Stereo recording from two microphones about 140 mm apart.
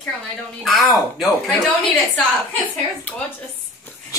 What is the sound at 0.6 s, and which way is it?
A woman's voice, centre (ahead or behind).